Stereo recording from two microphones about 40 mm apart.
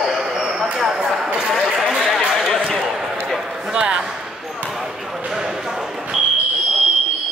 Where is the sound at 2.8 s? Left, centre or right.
Centre.